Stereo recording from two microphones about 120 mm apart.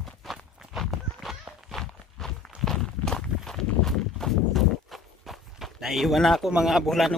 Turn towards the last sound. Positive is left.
turn(degrees=0)  # may be behind; listen again after turning